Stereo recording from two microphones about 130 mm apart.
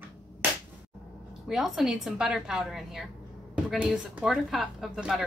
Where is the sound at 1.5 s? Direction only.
5° right (ahead or behind).